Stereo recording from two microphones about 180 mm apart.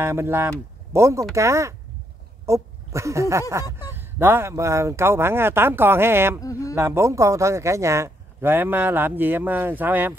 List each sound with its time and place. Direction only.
0.0 s speech: 15° right (ahead or behind)
6.4 s speech: 20° left (ahead or behind)
6.7 s speech: 15° right (ahead or behind)